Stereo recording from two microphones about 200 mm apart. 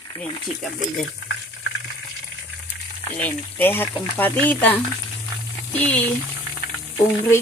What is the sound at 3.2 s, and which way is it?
Speech, 10° left (ahead or behind).